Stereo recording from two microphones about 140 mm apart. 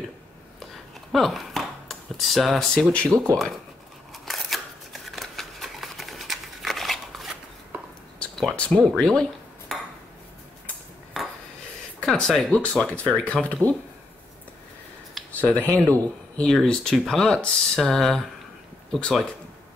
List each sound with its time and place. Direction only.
1.1 s speech: centre (ahead or behind)
4.1 s a sound: centre (ahead or behind)
8.2 s cutlery: 5° left (ahead or behind)
11.1 s a sound: centre (ahead or behind)
12.0 s speech: 5° left (ahead or behind)
15.4 s speech: 10° left (ahead or behind)